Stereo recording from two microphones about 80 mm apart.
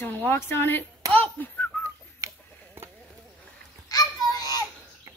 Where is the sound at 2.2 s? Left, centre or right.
Right.